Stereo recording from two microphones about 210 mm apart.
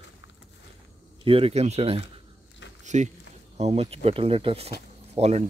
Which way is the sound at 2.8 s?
35° right (ahead or behind).